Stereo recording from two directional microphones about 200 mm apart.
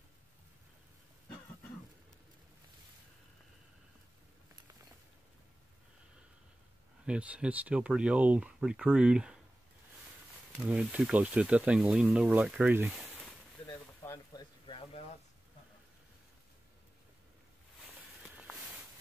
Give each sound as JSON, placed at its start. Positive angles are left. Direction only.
{"t": 7.1, "sound": "speech", "side_deg": -5}
{"t": 10.6, "sound": "speech", "side_deg": -10}
{"t": 13.7, "sound": "a sound", "side_deg": 15}